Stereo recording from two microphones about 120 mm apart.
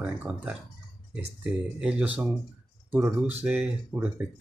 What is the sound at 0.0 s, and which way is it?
Speech, 10° right (ahead or behind).